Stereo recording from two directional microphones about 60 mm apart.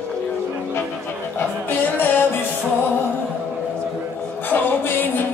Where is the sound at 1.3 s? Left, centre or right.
Left.